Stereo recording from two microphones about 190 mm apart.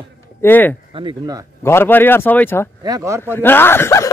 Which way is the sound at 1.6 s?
15° left (ahead or behind).